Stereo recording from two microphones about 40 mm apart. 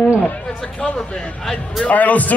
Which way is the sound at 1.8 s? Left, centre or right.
Left.